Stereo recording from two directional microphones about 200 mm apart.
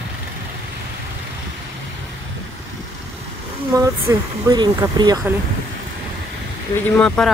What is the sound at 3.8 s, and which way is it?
Speech, 15° right (ahead or behind).